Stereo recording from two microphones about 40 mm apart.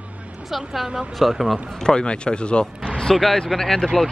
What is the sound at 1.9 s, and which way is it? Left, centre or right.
Speech, left.